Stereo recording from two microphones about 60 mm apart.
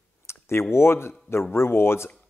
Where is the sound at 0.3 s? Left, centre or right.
Left.